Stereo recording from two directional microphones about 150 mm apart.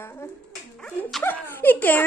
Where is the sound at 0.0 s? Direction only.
15° left (ahead or behind).